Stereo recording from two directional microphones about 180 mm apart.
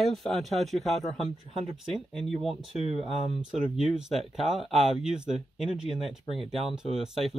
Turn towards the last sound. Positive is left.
turn(degrees=0)  # may be behind; listen again after turning